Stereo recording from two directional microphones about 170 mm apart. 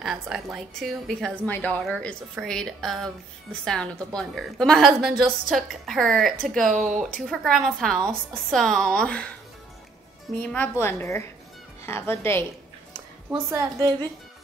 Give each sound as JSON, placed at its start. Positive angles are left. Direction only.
{"t": 0.0, "sound": "a woman's voice", "side_deg": -5}
{"t": 10.4, "sound": "speech", "side_deg": 10}
{"t": 13.3, "sound": "a woman's voice", "side_deg": -20}